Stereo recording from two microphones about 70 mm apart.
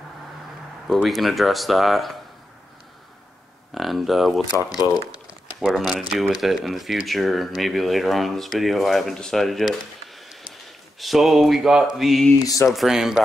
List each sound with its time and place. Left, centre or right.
1.0 s speech: centre
3.7 s speech: centre
4.5 s speech: left
5.6 s speech: centre